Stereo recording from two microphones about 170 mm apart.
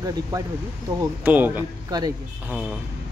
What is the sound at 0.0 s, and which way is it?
Speech, 20° right (ahead or behind).